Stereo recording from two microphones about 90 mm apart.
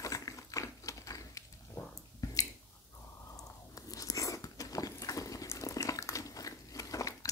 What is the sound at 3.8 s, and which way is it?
Biting, 40° left (ahead or behind).